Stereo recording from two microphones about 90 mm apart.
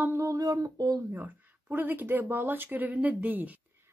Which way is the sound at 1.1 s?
25° right (ahead or behind).